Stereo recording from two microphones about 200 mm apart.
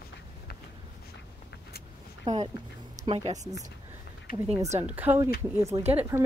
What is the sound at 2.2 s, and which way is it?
Speech, 30° right (ahead or behind).